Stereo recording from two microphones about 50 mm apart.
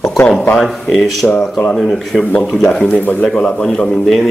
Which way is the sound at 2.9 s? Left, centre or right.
Left.